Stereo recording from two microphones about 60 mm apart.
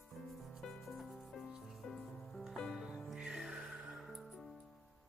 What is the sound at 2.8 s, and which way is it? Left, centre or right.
Music, centre.